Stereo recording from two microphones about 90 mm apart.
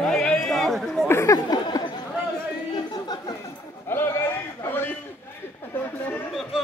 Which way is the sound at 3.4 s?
25° left (ahead or behind).